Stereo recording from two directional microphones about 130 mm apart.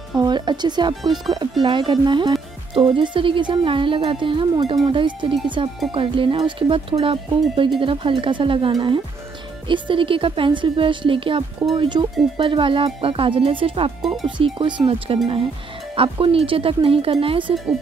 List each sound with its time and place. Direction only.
0.2 s speech: 35° right (ahead or behind)